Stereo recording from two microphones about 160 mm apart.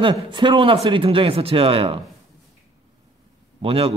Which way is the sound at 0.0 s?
30° right (ahead or behind).